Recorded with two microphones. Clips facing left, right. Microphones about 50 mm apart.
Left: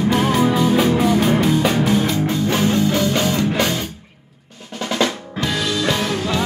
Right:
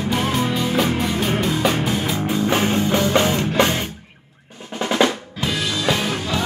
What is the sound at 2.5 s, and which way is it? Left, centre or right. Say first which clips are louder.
Music: left 1 dB; right.